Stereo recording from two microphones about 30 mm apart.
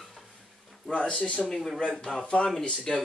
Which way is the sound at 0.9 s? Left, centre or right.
Left.